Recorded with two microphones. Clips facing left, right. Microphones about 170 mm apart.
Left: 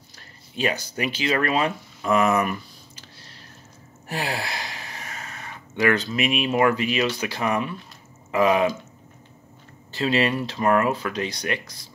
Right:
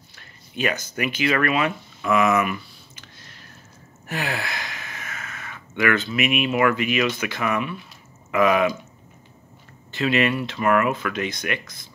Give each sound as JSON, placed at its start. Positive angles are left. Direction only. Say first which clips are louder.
{"t": 0.6, "sound": "speech", "louder": "even", "side_deg": 30}
{"t": 9.8, "sound": "speech", "louder": "right 1 dB", "side_deg": 35}